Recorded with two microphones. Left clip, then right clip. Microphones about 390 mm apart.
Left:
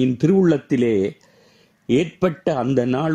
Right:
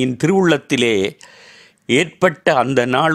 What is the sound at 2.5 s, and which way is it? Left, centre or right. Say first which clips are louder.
Speech: right 6 dB; right.